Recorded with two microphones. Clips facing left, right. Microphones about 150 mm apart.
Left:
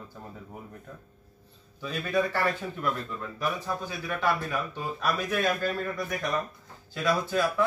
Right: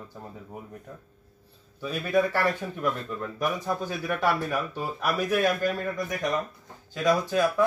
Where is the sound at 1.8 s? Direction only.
10° right (ahead or behind).